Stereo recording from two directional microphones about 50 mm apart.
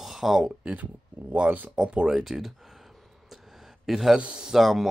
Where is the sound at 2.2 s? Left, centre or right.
Centre.